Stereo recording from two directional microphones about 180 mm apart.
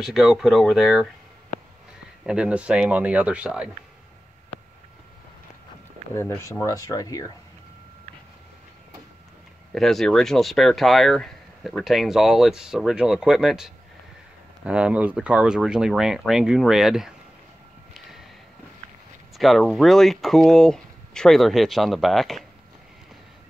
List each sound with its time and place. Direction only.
0.0 s speech: centre (ahead or behind)
2.2 s speech: 5° right (ahead or behind)
6.1 s speech: 15° left (ahead or behind)
9.7 s speech: centre (ahead or behind)
19.3 s speech: centre (ahead or behind)